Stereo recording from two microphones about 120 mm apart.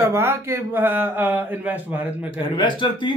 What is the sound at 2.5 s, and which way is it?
Speech, 40° left (ahead or behind).